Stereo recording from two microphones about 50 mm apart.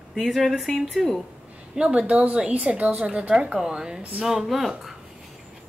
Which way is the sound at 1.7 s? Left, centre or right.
Centre.